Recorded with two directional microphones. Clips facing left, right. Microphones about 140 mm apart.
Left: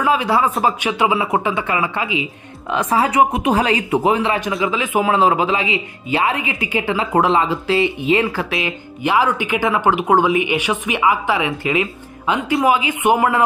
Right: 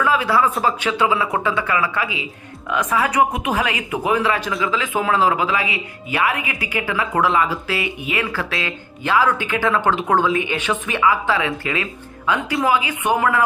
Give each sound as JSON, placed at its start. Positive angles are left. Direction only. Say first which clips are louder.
{"t": 0.0, "sound": "speech", "louder": "left 1 dB", "side_deg": 20}
{"t": 2.7, "sound": "speech", "louder": "left 3 dB", "side_deg": 30}